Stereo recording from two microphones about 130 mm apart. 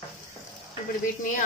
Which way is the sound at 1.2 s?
90° left.